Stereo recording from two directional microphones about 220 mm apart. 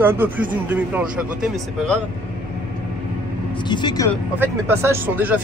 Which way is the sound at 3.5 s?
20° left (ahead or behind).